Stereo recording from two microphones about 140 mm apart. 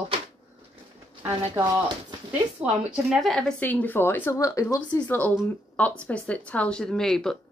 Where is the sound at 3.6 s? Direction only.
10° left (ahead or behind).